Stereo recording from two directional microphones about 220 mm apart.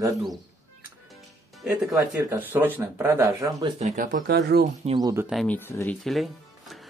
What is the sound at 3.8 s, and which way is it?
Speech, 40° right (ahead or behind).